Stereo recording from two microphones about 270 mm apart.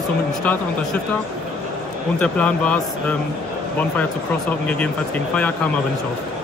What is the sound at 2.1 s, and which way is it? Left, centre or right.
Speech, centre.